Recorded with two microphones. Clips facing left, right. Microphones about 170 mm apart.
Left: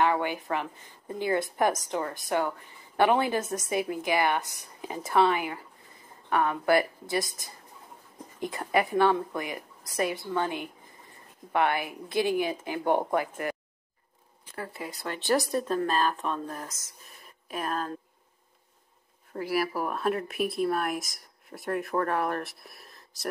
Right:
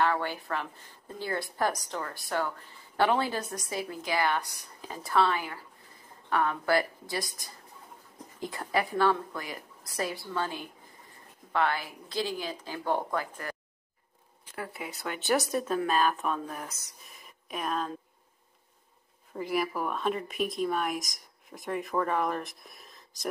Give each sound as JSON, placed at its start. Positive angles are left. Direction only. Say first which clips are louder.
{"t": 0.0, "sound": "a woman's voice", "louder": "left 2 dB", "side_deg": 15}
{"t": 14.5, "sound": "speech", "louder": "left 1 dB", "side_deg": -5}
{"t": 19.3, "sound": "speech", "louder": "left 2 dB", "side_deg": 5}